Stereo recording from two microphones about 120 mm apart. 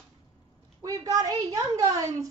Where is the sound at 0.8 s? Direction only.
30° right (ahead or behind).